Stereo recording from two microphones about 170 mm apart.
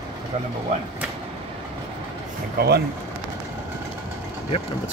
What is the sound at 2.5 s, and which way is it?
Speech, 70° right (ahead or behind).